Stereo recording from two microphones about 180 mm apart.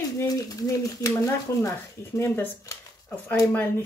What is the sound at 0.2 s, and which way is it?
Speech, 20° left (ahead or behind).